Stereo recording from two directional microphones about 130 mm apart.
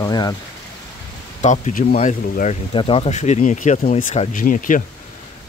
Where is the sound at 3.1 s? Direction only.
65° left (ahead or behind); by 4.8 s 90° left.